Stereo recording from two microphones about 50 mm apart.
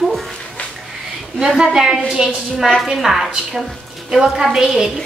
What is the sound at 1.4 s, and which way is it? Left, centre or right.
A woman's voice, centre.